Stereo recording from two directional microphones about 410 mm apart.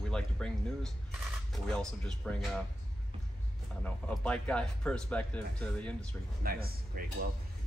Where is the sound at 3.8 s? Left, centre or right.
Centre.